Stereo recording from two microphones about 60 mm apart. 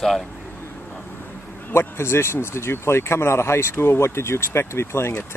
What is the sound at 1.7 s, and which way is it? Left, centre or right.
Speech, left.